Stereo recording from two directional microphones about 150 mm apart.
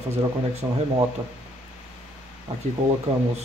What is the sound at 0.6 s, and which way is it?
Speech, 15° right (ahead or behind).